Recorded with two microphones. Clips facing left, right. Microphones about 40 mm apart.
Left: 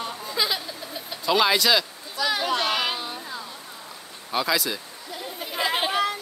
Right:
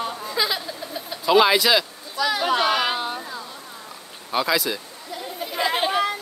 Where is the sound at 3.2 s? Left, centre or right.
Centre.